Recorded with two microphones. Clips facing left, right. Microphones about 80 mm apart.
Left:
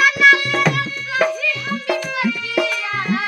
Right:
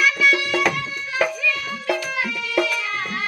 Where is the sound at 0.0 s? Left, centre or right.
Left.